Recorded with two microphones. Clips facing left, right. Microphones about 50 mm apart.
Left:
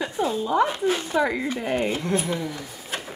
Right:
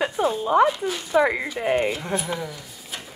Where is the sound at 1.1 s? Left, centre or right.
Right.